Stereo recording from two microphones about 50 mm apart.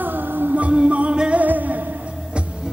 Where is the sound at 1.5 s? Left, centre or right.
Right.